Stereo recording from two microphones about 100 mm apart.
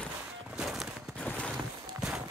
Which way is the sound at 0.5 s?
5° right (ahead or behind).